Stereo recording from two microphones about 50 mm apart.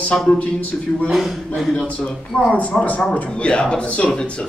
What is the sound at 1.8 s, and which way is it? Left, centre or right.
A man's voice, left.